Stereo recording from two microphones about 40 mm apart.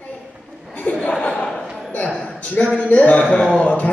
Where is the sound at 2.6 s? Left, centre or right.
Left.